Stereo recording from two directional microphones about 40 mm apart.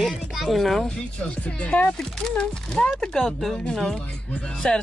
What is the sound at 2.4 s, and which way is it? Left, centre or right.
Speech, left.